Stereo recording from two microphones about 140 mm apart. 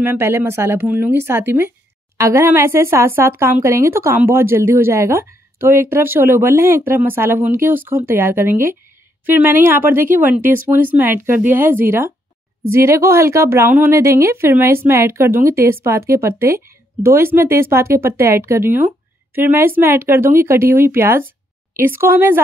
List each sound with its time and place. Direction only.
0.0 s speech: 15° right (ahead or behind)